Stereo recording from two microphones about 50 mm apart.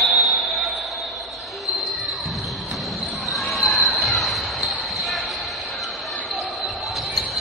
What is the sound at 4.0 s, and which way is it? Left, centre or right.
Basketball bounce, centre.